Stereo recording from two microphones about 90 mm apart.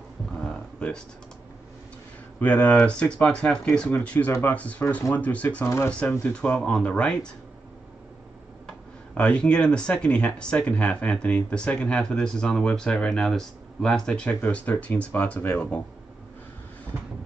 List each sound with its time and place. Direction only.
0.4 s a sound: 10° left (ahead or behind)
2.4 s speech: 15° left (ahead or behind)
8.6 s speech: 10° left (ahead or behind)